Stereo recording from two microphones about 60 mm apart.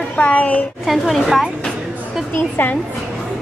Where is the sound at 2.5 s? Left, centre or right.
Left.